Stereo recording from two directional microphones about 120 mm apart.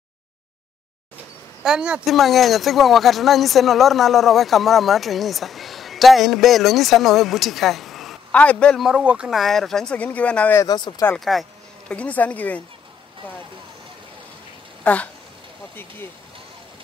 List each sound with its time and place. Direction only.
1.6 s speech: 5° right (ahead or behind)
8.3 s speech: 10° left (ahead or behind)
8.8 s speech: 10° right (ahead or behind); by 10.6 s 10° left (ahead or behind)
10.6 s speech: 35° left (ahead or behind)
11.1 s speech: centre (ahead or behind)
11.9 s speech: 10° left (ahead or behind)
14.8 s a sound: 10° left (ahead or behind)
15.7 s speech: 20° left (ahead or behind)